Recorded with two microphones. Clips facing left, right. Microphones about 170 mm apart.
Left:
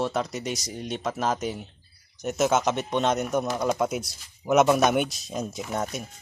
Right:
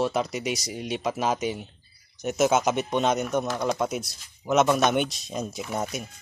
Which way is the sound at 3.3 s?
10° left (ahead or behind).